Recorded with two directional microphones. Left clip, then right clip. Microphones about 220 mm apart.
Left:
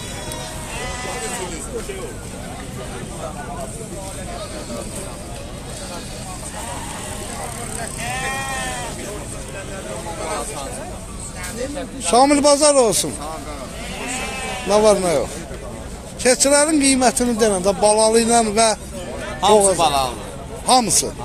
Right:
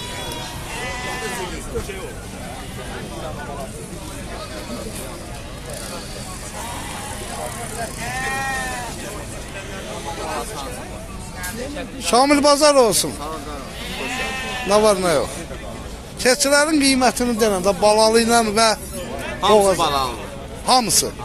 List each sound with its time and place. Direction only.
12.1 s speech: centre (ahead or behind)
14.7 s speech: centre (ahead or behind)
19.8 s a man's voice: 40° left (ahead or behind)
20.6 s speech: centre (ahead or behind)